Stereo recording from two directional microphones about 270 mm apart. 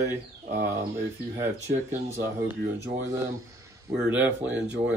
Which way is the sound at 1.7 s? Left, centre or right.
Right.